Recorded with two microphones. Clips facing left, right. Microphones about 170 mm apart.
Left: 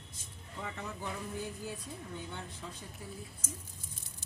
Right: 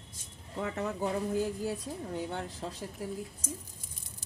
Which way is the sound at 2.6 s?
50° right (ahead or behind).